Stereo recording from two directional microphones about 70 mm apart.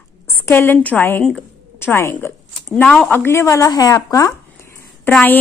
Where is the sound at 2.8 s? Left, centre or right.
Centre.